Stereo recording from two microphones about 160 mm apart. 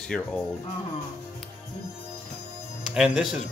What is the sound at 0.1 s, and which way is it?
Speech, 5° left (ahead or behind).